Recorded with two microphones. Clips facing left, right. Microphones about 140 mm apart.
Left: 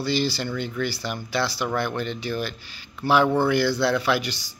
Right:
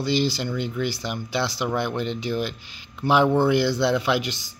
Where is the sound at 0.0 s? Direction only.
20° right (ahead or behind).